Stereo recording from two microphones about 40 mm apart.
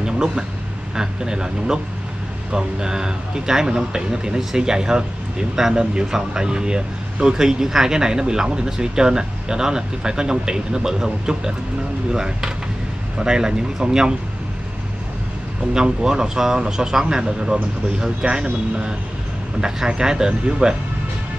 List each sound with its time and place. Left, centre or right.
0.0 s a sound: centre
0.9 s speech: centre
15.7 s speech: centre